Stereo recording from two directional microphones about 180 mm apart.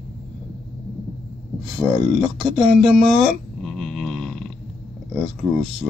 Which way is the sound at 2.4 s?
Centre (ahead or behind).